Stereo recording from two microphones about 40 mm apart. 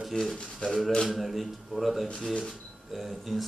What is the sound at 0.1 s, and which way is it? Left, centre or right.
Speech, centre.